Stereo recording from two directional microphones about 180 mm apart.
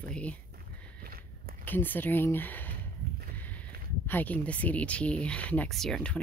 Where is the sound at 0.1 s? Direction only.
5° left (ahead or behind).